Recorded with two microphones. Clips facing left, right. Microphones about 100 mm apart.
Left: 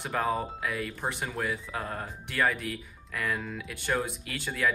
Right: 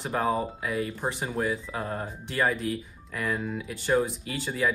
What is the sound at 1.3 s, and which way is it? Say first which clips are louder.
Speech: right 4 dB; 30° right (ahead or behind).